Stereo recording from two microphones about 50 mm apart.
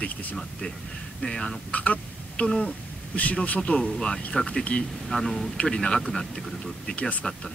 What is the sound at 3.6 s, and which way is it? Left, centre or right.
Speech, centre.